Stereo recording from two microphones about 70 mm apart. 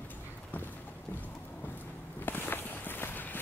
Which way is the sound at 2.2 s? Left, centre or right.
Left.